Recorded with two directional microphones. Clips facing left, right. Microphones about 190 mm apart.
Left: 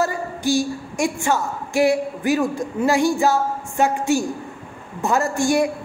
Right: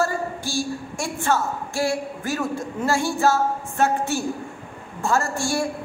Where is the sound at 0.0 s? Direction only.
20° left (ahead or behind).